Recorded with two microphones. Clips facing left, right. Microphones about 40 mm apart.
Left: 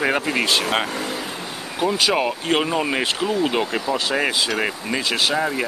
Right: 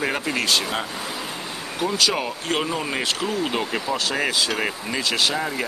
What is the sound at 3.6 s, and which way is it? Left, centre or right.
Speech, centre.